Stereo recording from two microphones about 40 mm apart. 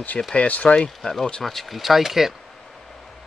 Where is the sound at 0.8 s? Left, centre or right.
Centre.